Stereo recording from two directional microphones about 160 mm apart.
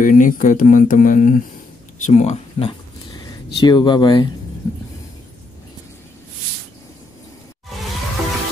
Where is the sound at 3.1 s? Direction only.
25° left (ahead or behind).